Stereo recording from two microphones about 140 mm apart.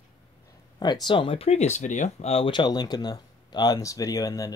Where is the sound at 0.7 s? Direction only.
30° left (ahead or behind); by 2.3 s 60° left (ahead or behind).